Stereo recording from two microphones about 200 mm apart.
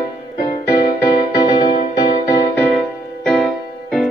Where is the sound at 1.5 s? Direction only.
40° left (ahead or behind).